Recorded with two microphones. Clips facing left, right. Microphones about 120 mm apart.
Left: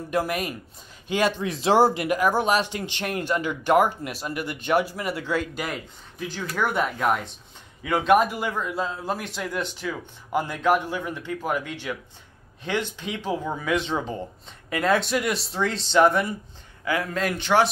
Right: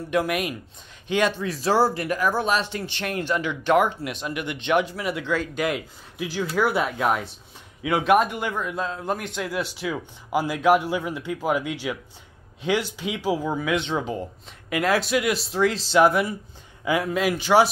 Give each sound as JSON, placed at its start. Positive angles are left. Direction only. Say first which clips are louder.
{"t": 0.3, "sound": "speech", "louder": "right 2 dB", "side_deg": -5}
{"t": 1.1, "sound": "speech", "louder": "right 1 dB", "side_deg": 15}
{"t": 4.3, "sound": "speech", "louder": "left 1 dB", "side_deg": 40}
{"t": 4.6, "sound": "speech", "louder": "right 1 dB", "side_deg": 5}
{"t": 16.8, "sound": "speech", "louder": "right 3 dB", "side_deg": -15}